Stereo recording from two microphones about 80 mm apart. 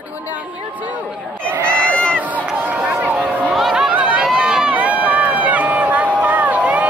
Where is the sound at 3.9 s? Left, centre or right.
Centre.